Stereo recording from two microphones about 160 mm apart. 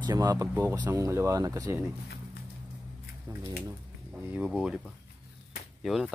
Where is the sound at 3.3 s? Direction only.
15° right (ahead or behind).